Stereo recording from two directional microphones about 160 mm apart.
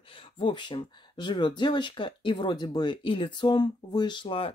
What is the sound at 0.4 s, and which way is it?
Speech, 30° left (ahead or behind).